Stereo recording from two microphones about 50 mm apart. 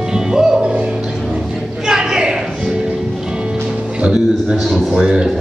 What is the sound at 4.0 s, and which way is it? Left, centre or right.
Music, centre.